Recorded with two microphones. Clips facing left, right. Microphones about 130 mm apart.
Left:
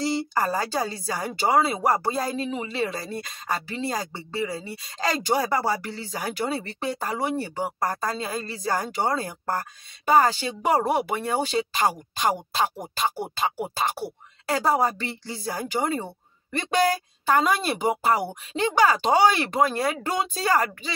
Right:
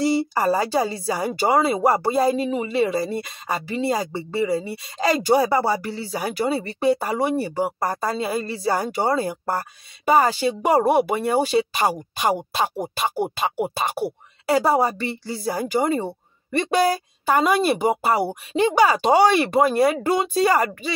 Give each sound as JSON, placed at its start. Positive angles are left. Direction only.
{"t": 0.0, "sound": "speech", "side_deg": -10}
{"t": 13.2, "sound": "speech", "side_deg": -20}
{"t": 14.0, "sound": "speech", "side_deg": -5}